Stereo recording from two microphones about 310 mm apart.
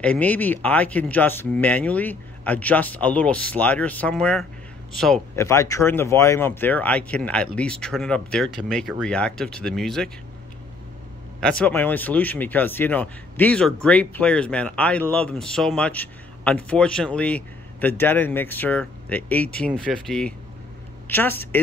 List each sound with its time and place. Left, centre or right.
0.0 s speech: centre
11.4 s speech: centre